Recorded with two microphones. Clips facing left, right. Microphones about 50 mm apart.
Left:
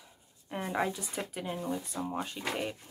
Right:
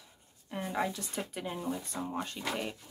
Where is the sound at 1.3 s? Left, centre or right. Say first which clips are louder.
Left 2 dB; centre.